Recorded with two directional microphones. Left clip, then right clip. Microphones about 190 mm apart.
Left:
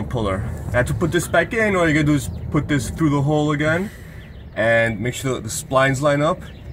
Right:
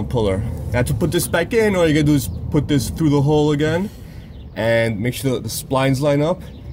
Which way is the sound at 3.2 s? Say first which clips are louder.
Right 2 dB; 55° right (ahead or behind).